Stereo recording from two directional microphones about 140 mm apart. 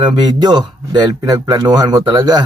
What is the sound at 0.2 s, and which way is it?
Speech, 30° right (ahead or behind).